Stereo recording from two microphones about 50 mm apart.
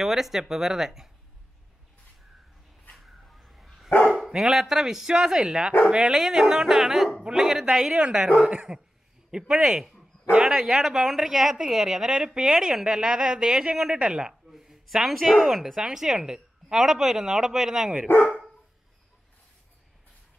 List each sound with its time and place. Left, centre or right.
0.0 s a woman's voice: centre
2.9 s dog: centre
4.3 s a woman's voice: centre
7.9 s a woman's voice: centre
14.5 s a sound: centre
15.5 s a woman's voice: centre